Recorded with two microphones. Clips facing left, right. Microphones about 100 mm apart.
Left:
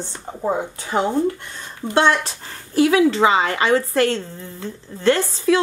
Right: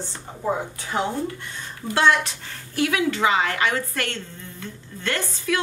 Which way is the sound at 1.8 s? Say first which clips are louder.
Left 2 dB; 25° left (ahead or behind).